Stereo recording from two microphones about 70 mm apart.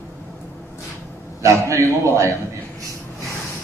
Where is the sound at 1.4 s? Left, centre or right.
Right.